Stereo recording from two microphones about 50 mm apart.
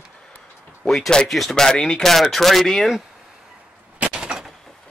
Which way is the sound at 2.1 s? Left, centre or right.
Centre.